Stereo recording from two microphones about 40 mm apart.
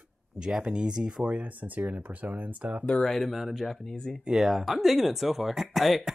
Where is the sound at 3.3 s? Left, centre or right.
Centre.